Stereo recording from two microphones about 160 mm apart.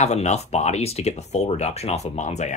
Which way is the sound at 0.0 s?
45° left (ahead or behind).